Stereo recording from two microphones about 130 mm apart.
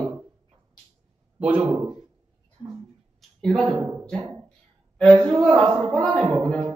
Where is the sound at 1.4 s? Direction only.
10° right (ahead or behind).